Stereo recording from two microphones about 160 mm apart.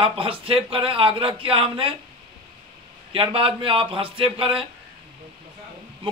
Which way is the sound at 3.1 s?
35° right (ahead or behind).